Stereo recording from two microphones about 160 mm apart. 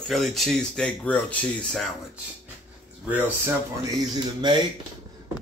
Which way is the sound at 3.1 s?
10° right (ahead or behind).